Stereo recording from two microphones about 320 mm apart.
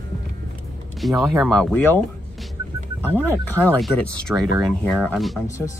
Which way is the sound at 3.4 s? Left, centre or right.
Centre.